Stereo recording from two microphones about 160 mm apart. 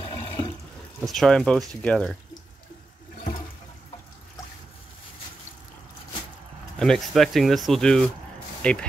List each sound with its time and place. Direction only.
0.0 s water: 35° left (ahead or behind)
1.0 s speech: centre (ahead or behind)
6.8 s speech: centre (ahead or behind)